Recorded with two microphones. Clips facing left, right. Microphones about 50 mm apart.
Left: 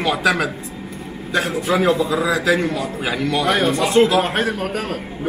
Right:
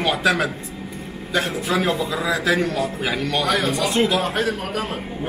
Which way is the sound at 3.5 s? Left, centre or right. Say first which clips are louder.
Left 4 dB; left.